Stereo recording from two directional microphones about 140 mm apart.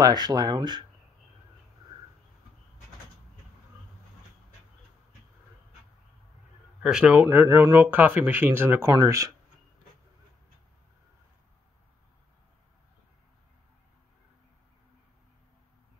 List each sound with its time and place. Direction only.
0.0 s speech: 30° right (ahead or behind)
6.8 s speech: 5° right (ahead or behind)
7.2 s speech: 15° right (ahead or behind)